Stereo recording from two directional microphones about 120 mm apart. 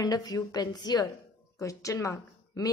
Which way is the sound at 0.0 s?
30° left (ahead or behind).